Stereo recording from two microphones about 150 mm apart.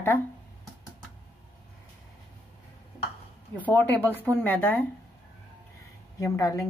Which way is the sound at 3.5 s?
10° left (ahead or behind).